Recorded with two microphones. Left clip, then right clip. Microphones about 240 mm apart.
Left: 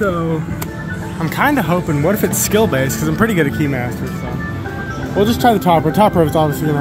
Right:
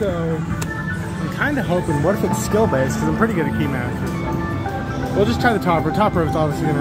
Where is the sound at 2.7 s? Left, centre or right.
Left.